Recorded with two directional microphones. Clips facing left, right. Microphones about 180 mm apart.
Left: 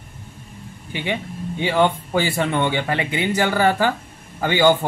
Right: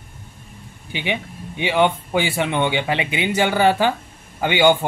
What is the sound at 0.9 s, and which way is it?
Speech, 20° right (ahead or behind).